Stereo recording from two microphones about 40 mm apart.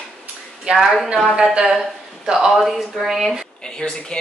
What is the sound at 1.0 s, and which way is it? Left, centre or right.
Speech, centre.